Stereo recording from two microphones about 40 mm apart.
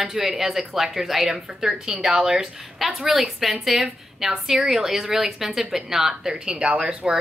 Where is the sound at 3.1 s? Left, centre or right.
Centre; by 7.1 s right.